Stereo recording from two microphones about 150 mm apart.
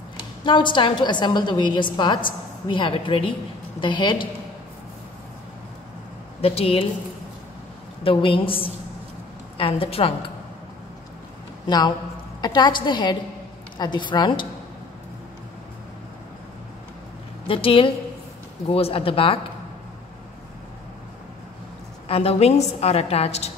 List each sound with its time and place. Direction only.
0.5 s a woman's voice: 30° left (ahead or behind)
6.4 s a woman's voice: 40° left (ahead or behind)
8.0 s a woman's voice: 35° left (ahead or behind)
11.6 s a man's voice: 30° left (ahead or behind)
17.5 s a woman's voice: 35° left (ahead or behind)
22.0 s a woman's voice: 40° left (ahead or behind)